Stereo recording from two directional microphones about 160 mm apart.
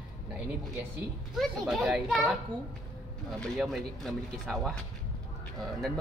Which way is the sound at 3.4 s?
Centre (ahead or behind).